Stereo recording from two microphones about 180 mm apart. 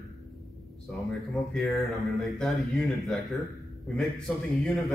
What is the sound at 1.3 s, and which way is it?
A man's voice, centre (ahead or behind).